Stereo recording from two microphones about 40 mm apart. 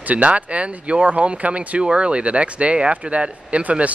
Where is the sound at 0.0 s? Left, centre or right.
Right.